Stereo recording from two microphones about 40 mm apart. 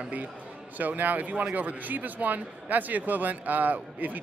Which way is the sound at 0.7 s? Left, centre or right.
Right.